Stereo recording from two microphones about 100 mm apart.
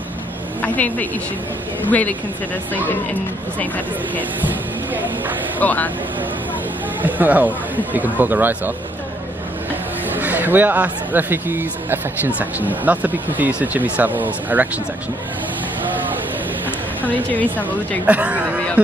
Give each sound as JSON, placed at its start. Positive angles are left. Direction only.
{"t": 0.6, "sound": "speech", "side_deg": 15}
{"t": 3.5, "sound": "speech", "side_deg": 15}
{"t": 5.6, "sound": "speech", "side_deg": 15}
{"t": 7.0, "sound": "speech", "side_deg": -15}
{"t": 10.1, "sound": "speech", "side_deg": -20}
{"t": 17.0, "sound": "speech", "side_deg": 15}
{"t": 18.0, "sound": "speech", "side_deg": -15}